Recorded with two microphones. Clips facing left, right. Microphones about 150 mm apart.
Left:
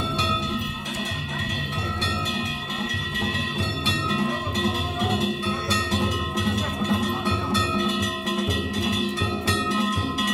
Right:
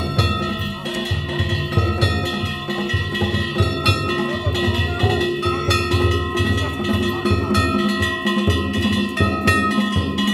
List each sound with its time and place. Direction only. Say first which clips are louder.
3.2 s music: right 7 dB; 70° right (ahead or behind)